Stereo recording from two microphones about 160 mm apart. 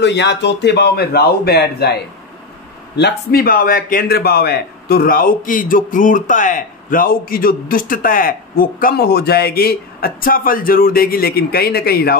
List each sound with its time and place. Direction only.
0.0 s a man's voice: 90° left
3.0 s a man's voice: 80° left